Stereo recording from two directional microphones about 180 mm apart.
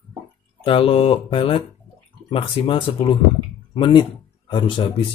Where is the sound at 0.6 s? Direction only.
30° left (ahead or behind).